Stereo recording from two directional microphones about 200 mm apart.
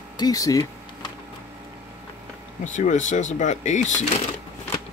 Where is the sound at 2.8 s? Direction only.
40° left (ahead or behind).